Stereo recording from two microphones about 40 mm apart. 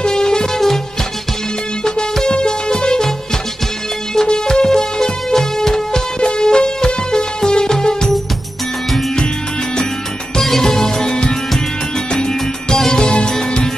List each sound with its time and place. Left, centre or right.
0.0 s music: centre
1.9 s music: centre
4.1 s music: centre
10.3 s music: centre